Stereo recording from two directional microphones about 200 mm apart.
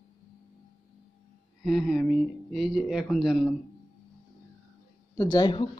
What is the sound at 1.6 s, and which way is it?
Speech, centre (ahead or behind).